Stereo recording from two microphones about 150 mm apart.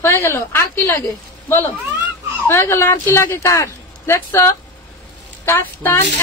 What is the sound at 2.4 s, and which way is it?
Speech, 15° left (ahead or behind).